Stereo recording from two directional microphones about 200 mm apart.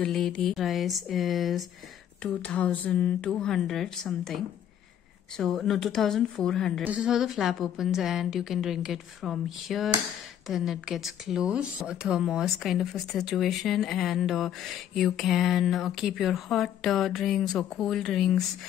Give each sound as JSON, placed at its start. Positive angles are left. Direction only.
{"t": 0.0, "sound": "speech", "side_deg": 5}
{"t": 5.4, "sound": "speech", "side_deg": 0}